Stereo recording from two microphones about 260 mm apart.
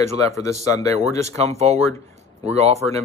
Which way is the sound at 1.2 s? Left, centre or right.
Right.